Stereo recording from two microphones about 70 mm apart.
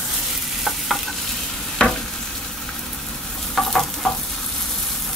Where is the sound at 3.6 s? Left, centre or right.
Centre.